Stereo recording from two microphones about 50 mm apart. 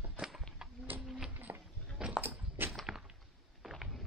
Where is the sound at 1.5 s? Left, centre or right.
Right.